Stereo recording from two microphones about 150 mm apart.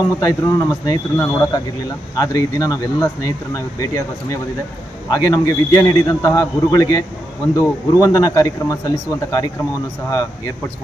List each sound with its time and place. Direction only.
0.2 s speech: 25° left (ahead or behind)
5.1 s speech: 25° left (ahead or behind)